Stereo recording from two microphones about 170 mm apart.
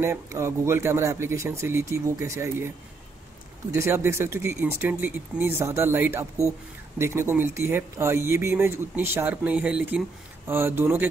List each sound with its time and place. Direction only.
0.0 s speech: 15° right (ahead or behind)
3.7 s speech: 15° right (ahead or behind)